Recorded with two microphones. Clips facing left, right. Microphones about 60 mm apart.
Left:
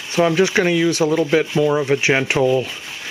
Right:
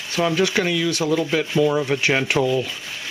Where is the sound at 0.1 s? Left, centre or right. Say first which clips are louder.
Left 4 dB; centre.